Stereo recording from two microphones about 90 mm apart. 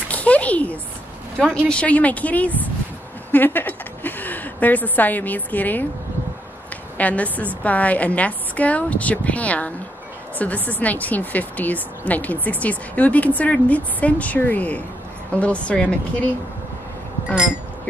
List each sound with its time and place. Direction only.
0.1 s a sound: 15° left (ahead or behind)
1.7 s a woman's voice: 15° left (ahead or behind)
7.0 s a woman's voice: 15° left (ahead or behind)